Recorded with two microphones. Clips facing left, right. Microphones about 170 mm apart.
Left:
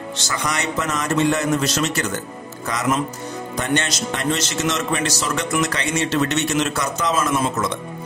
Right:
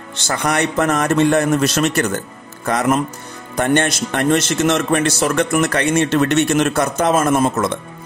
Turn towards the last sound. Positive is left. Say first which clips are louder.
# right 5 dB
turn(degrees=-50)  # may be behind; listen again after turning